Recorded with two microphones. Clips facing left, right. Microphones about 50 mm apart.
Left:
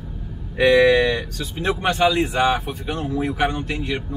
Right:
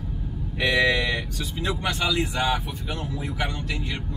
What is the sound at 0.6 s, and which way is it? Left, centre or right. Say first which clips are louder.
Speech: left 8 dB; left.